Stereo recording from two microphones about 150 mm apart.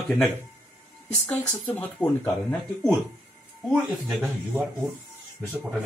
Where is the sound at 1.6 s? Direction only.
10° left (ahead or behind).